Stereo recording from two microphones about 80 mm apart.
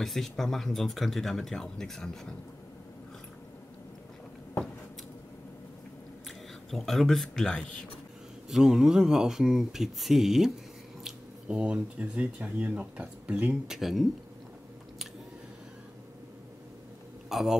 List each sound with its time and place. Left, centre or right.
0.0 s speech: centre
6.7 s speech: centre
8.5 s speech: centre
13.7 s speech: centre
17.3 s speech: centre